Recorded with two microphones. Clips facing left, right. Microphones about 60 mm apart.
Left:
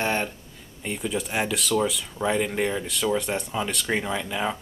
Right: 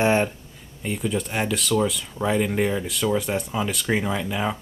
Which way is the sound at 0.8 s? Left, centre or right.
Centre.